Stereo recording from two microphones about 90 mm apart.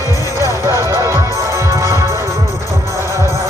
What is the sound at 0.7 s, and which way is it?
Music, 35° right (ahead or behind).